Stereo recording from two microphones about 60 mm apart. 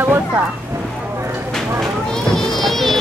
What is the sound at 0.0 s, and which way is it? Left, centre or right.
Vehicle, right.